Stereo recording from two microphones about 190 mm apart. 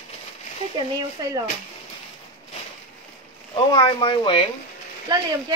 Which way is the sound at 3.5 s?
25° left (ahead or behind).